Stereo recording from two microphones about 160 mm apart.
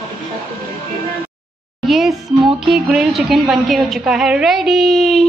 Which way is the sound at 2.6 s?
5° right (ahead or behind).